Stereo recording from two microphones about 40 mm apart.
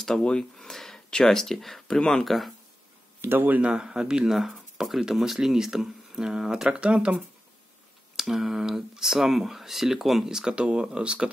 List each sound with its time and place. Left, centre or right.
0.0 s speech: centre
0.6 s a sound: centre
1.2 s speech: centre
2.0 s speech: centre
2.2 s speech: centre
3.2 s speech: right
3.6 s speech: right
4.3 s speech: centre
6.7 s speech: right
8.2 s speech: centre
10.5 s speech: right